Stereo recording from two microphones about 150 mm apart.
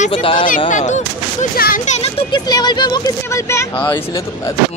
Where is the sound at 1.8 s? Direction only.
45° left (ahead or behind).